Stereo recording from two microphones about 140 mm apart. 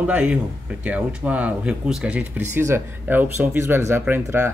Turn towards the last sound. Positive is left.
turn(degrees=-20)  # may be behind; listen again after turning